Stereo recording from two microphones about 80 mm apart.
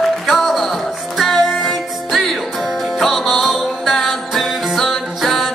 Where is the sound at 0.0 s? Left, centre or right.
Centre.